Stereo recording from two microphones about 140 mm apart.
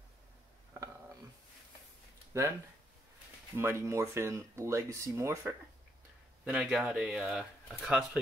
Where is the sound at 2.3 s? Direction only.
20° right (ahead or behind).